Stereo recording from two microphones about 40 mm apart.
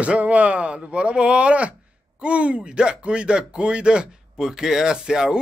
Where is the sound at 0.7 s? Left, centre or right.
Right.